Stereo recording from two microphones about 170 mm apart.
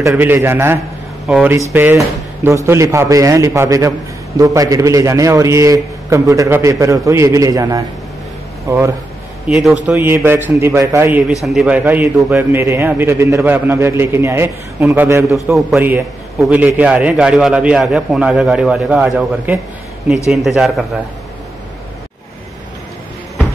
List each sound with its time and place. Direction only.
0.1 s a man's voice: 10° right (ahead or behind)
9.5 s a man's voice: centre (ahead or behind)
9.9 s a man's voice: 15° right (ahead or behind)
15.4 s a man's voice: 5° right (ahead or behind)
20.2 s a man's voice: centre (ahead or behind)